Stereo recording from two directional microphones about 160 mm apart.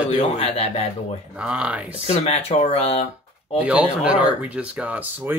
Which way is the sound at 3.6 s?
10° right (ahead or behind).